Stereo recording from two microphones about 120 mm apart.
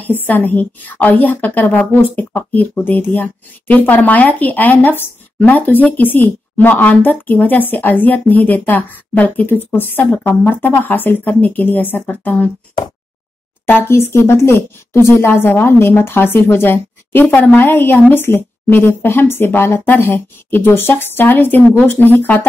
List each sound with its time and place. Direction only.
0.0 s a woman's voice: 15° left (ahead or behind)
13.7 s a woman's voice: 20° left (ahead or behind)